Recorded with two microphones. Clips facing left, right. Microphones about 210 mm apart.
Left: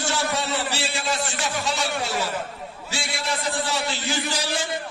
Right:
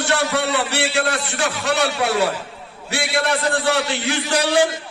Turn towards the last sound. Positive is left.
turn(degrees=-60)  # may be behind; listen again after turning